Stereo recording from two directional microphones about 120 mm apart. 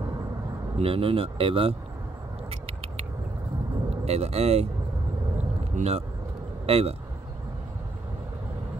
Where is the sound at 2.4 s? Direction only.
55° right (ahead or behind).